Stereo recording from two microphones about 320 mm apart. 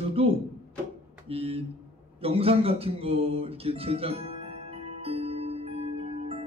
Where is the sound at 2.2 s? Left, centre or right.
Centre.